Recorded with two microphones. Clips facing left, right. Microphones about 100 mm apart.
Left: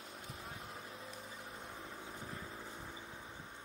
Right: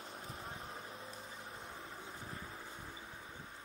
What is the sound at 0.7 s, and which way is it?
Vehicle, 5° right (ahead or behind).